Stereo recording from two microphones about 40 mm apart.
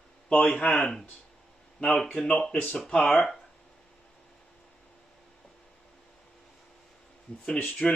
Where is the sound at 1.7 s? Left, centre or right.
Centre.